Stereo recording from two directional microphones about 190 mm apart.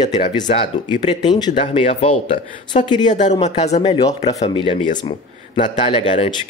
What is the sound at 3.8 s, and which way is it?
Speech, 25° left (ahead or behind).